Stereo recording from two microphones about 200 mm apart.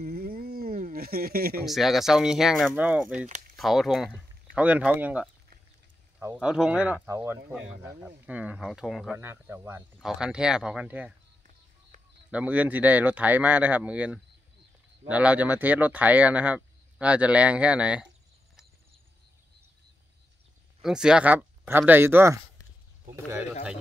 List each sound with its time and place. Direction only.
0.0 s a sound: 50° right (ahead or behind)
1.7 s speech: centre (ahead or behind)
9.2 s speech: 10° right (ahead or behind)
9.9 s speech: centre (ahead or behind)
12.3 s speech: 5° right (ahead or behind)
20.8 s speech: 5° right (ahead or behind)